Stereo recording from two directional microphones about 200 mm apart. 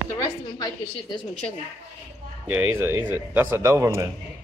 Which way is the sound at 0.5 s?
20° left (ahead or behind).